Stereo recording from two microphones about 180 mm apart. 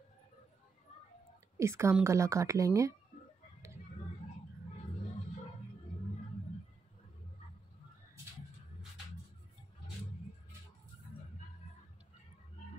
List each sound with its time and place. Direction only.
1.6 s speech: 15° right (ahead or behind)